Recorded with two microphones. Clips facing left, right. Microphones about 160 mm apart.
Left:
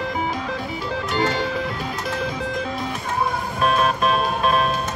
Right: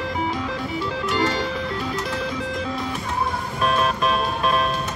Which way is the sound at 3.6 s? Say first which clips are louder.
Left 2 dB; 40° left (ahead or behind).